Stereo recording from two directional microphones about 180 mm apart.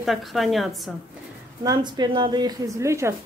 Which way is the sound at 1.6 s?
25° right (ahead or behind).